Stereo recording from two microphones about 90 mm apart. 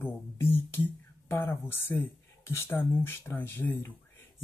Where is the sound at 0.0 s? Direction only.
25° left (ahead or behind).